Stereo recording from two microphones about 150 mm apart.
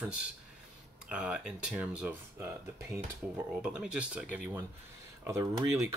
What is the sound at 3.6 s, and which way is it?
Speech, 5° right (ahead or behind).